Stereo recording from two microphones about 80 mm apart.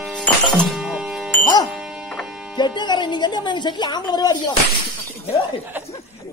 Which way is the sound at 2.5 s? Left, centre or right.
Left.